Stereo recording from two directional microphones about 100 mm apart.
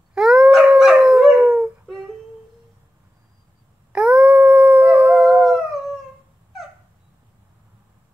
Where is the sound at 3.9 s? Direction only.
10° right (ahead or behind).